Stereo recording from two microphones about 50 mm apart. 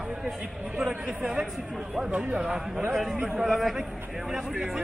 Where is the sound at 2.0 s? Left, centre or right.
Right.